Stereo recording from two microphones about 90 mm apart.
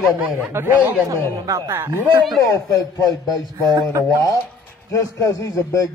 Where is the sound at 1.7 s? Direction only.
25° right (ahead or behind).